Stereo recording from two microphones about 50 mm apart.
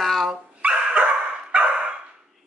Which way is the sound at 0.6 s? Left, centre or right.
Right.